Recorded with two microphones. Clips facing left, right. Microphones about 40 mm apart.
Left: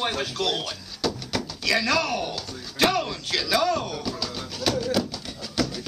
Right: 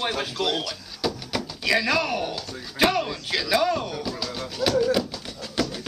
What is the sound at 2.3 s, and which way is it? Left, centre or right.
Speech, centre.